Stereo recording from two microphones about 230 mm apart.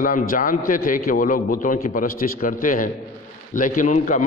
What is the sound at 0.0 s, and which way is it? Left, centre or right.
A man's voice, left.